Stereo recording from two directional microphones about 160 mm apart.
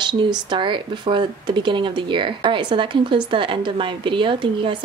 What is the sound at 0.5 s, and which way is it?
Speech, 30° right (ahead or behind).